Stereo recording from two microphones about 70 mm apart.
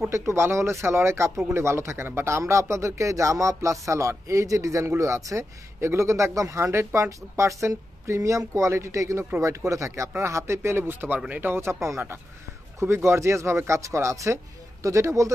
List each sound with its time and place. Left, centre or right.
0.1 s speech: right
11.5 s speech: right